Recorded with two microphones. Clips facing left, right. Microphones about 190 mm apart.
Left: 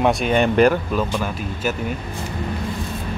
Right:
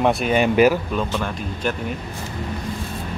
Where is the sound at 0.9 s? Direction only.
5° left (ahead or behind).